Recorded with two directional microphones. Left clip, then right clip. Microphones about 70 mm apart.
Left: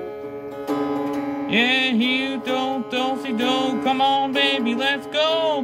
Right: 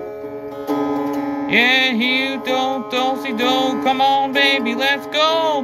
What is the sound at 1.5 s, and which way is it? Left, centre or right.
Music, left.